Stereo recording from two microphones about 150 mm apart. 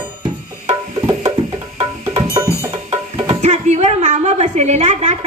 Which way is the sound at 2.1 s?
20° right (ahead or behind).